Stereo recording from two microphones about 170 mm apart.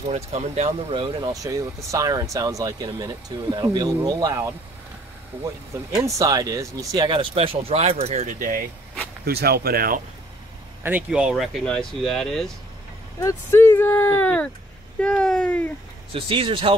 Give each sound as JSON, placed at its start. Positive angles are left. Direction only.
{"t": 0.1, "sound": "speech", "side_deg": -40}
{"t": 1.2, "sound": "speech", "side_deg": -20}
{"t": 5.9, "sound": "speech", "side_deg": -20}
{"t": 9.2, "sound": "speech", "side_deg": -65}
{"t": 10.8, "sound": "speech", "side_deg": -10}
{"t": 13.2, "sound": "speech", "side_deg": 15}
{"t": 16.1, "sound": "speech", "side_deg": -35}